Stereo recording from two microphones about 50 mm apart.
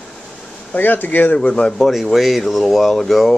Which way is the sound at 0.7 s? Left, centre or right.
Left.